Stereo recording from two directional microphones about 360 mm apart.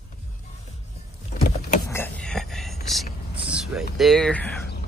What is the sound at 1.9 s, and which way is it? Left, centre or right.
Whispering, centre.